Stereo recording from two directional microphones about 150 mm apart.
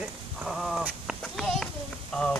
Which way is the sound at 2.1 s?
5° left (ahead or behind).